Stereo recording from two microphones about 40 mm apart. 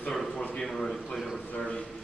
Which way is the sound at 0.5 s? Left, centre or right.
Centre.